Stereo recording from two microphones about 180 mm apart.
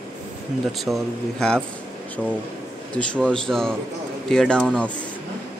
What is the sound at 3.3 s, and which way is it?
Speech, 5° left (ahead or behind).